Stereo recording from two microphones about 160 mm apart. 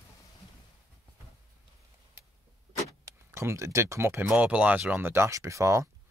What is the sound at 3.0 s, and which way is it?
Speech, 15° right (ahead or behind).